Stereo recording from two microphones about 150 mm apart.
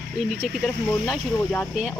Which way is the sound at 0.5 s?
Centre (ahead or behind).